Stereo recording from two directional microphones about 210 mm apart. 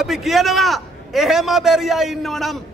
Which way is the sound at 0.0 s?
Centre (ahead or behind).